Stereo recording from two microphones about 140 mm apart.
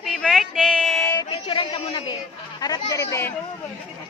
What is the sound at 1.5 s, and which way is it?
Chatter, 40° left (ahead or behind).